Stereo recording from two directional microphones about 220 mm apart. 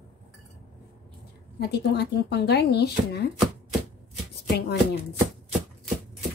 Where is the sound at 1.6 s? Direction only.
50° left (ahead or behind).